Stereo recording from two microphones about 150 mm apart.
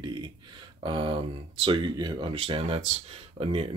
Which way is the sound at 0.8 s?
35° right (ahead or behind).